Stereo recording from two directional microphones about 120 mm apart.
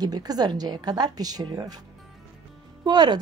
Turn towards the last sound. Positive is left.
turn(degrees=-35)  # may be behind; listen again after turning